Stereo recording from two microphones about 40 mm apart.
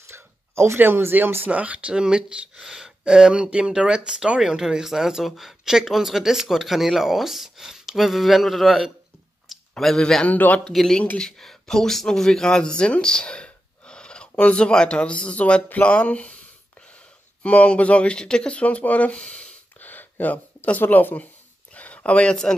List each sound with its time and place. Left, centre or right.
0.1 s a sound: right
0.7 s speech: right
1.5 s speech: right
2.0 s speech: right
2.6 s speech: centre
5.3 s speech: centre
10.2 s speech: left
11.3 s speech: centre; by 16.3 s left
17.4 s speech: left
18.6 s speech: left
19.2 s a sound: left
19.8 s a sound: left
20.8 s speech: left
21.7 s a sound: left